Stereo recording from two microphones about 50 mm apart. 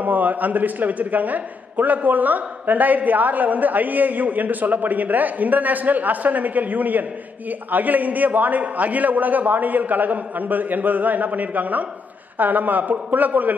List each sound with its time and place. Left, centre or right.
0.0 s a man's voice: right